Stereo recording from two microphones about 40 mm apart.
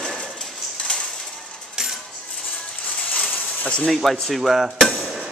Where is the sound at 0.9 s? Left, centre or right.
Centre.